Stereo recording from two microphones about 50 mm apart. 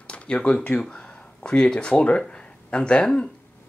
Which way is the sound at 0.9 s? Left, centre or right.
Left.